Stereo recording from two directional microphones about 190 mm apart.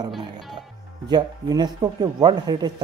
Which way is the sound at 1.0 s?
20° right (ahead or behind).